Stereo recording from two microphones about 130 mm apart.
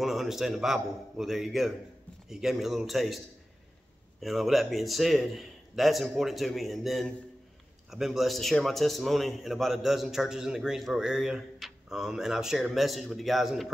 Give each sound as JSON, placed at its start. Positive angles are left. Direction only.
{"t": 0.0, "sound": "a man's voice", "side_deg": 0}
{"t": 4.2, "sound": "a man's voice", "side_deg": 0}